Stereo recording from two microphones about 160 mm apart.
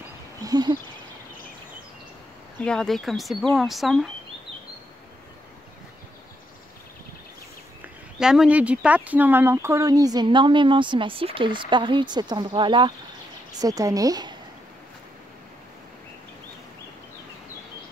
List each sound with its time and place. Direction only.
0.4 s a sound: 25° right (ahead or behind)
2.6 s speech: 5° left (ahead or behind)
8.2 s speech: 5° right (ahead or behind); by 14.3 s 25° right (ahead or behind)